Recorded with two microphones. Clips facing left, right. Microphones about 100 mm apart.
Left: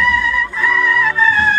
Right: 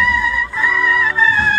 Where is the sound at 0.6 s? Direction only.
5° right (ahead or behind).